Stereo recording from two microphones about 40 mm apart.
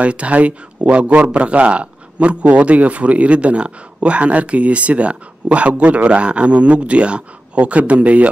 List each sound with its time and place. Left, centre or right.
0.0 s speech: right